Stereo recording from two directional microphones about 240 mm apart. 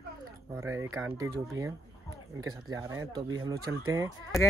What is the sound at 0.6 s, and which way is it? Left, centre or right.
Speech, centre.